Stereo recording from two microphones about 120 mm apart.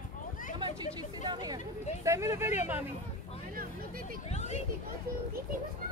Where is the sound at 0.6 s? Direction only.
40° right (ahead or behind).